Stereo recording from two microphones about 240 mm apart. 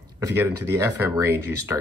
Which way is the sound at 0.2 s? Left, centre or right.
Centre.